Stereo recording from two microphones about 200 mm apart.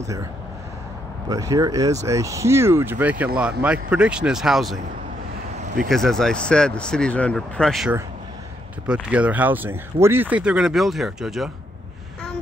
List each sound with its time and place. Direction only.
0.0 s speech: 15° right (ahead or behind)
1.3 s speech: 15° right (ahead or behind); by 4.7 s centre (ahead or behind)
5.9 s speech: centre (ahead or behind)